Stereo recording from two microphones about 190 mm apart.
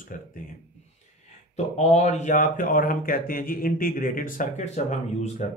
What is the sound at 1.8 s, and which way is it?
Speech, 35° left (ahead or behind).